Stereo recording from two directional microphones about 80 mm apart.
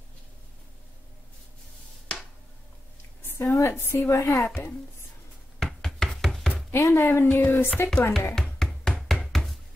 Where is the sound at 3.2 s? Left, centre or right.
Left.